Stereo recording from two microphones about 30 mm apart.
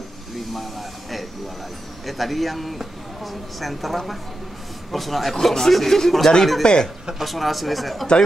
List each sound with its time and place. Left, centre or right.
2.0 s speech: centre
6.6 s speech: left
7.2 s speech: centre